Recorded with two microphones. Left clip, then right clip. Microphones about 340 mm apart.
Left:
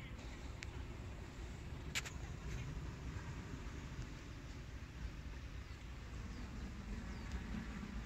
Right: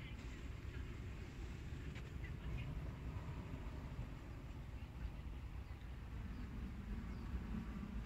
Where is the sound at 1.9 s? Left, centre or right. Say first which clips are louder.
Left 14 dB; left.